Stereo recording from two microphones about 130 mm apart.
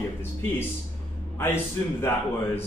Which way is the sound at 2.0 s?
20° left (ahead or behind).